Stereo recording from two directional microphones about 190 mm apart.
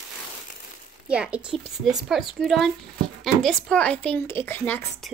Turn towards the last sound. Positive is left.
turn(degrees=10)  # may be behind; listen again after turning